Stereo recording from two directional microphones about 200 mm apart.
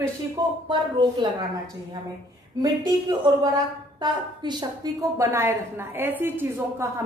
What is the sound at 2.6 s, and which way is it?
A woman's voice, 20° right (ahead or behind).